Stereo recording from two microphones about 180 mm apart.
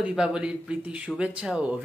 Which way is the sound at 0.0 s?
5° right (ahead or behind).